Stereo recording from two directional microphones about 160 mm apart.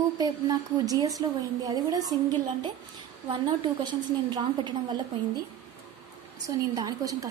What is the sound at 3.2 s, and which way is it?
A woman's voice, 30° right (ahead or behind).